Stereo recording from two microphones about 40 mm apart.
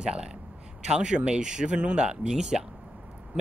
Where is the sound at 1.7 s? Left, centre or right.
Right; by 2.7 s centre.